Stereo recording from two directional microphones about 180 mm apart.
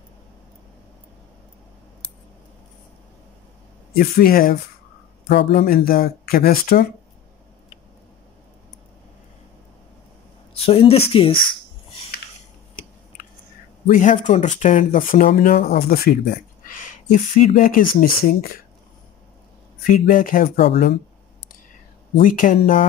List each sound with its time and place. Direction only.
3.9 s speech: 55° left (ahead or behind)
5.3 s speech: 65° left (ahead or behind)
10.5 s speech: 35° left (ahead or behind)
13.8 s speech: 45° left (ahead or behind)
19.9 s speech: 45° left (ahead or behind)
22.1 s speech: 50° left (ahead or behind)